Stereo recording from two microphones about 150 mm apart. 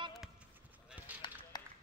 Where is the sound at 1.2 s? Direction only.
35° left (ahead or behind).